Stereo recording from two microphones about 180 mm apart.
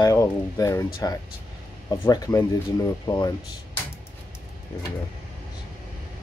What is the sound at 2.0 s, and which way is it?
Speech, 20° left (ahead or behind).